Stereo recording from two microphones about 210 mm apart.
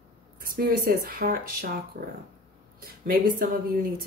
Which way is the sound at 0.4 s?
45° right (ahead or behind).